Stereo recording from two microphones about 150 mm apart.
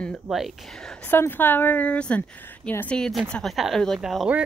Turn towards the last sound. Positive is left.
turn(degrees=-5)  # may be behind; listen again after turning